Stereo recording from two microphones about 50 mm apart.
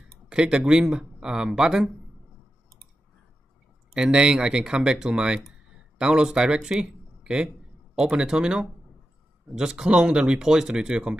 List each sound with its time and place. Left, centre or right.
0.3 s speech: centre
3.9 s speech: centre